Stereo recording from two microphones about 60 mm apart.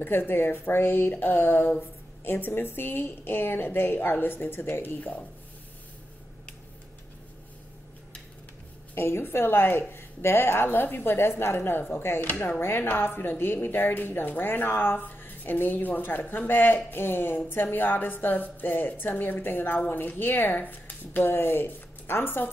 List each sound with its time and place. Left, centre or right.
0.0 s speech: left
8.9 s speech: left